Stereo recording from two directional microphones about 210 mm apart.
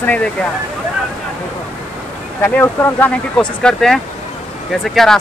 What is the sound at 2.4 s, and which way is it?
Speech, 10° left (ahead or behind).